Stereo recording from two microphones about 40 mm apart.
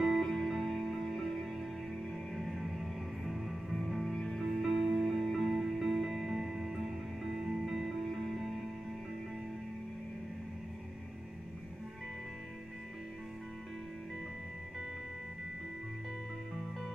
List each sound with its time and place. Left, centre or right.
0.0 s music: centre
4.5 s music: centre